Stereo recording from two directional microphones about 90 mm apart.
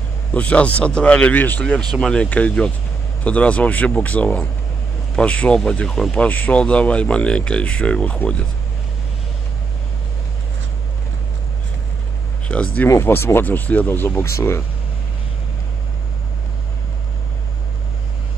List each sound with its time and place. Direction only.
0.3 s speech: 15° left (ahead or behind)
6.1 s speech: 15° left (ahead or behind)
12.4 s speech: 15° left (ahead or behind)
12.8 s speech: 25° left (ahead or behind)